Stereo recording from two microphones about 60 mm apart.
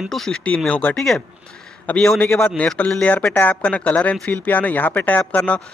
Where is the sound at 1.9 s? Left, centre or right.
Left.